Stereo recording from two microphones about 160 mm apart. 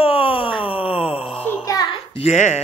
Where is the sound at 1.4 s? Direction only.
15° left (ahead or behind); by 2.6 s 45° left (ahead or behind).